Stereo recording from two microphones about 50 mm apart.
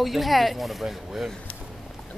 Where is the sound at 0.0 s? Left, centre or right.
Centre.